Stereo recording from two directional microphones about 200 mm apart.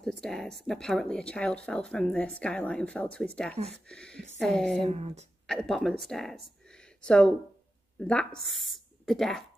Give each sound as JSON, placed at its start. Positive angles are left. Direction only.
{"t": 0.0, "sound": "speech", "side_deg": 5}
{"t": 4.8, "sound": "speech", "side_deg": -30}
{"t": 5.5, "sound": "speech", "side_deg": 0}
{"t": 6.7, "sound": "a sound", "side_deg": 5}
{"t": 8.0, "sound": "speech", "side_deg": 5}